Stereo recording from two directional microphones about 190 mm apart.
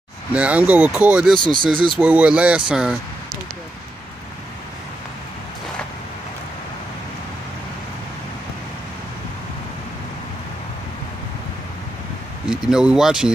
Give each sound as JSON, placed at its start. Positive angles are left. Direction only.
{"t": 0.3, "sound": "speech", "side_deg": -5}
{"t": 1.4, "sound": "speech", "side_deg": -25}
{"t": 2.0, "sound": "speech", "side_deg": -5}
{"t": 12.4, "sound": "speech", "side_deg": -5}